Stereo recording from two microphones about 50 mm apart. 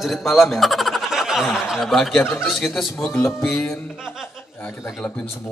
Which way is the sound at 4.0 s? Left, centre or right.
Centre.